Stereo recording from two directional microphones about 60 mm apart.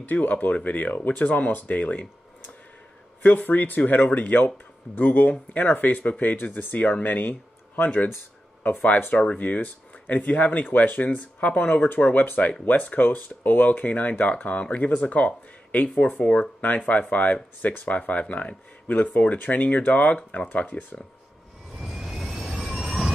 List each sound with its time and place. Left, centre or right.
0.0 s speech: left
9.4 s speech: left
21.7 s vehicle: centre